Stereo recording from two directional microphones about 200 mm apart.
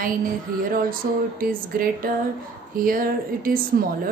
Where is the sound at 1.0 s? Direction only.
45° right (ahead or behind).